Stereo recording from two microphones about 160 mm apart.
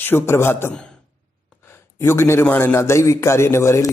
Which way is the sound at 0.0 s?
15° left (ahead or behind).